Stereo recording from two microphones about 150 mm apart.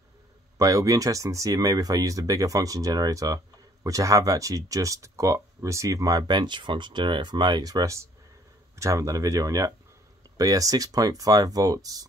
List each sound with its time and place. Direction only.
0.6 s speech: 20° right (ahead or behind)